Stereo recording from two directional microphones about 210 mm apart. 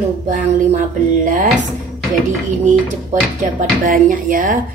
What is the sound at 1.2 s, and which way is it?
Speech, 35° right (ahead or behind).